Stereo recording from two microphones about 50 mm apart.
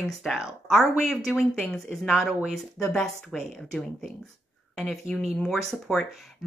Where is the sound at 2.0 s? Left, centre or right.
Centre.